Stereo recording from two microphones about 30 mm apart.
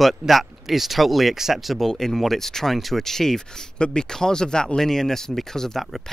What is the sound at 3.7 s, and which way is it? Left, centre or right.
Speech, left.